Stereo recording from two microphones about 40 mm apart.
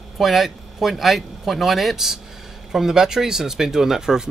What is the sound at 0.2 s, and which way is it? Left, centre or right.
Speech, centre.